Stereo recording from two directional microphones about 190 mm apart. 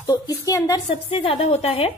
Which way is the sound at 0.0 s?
20° left (ahead or behind).